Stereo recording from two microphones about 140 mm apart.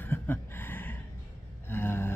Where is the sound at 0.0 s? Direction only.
15° left (ahead or behind).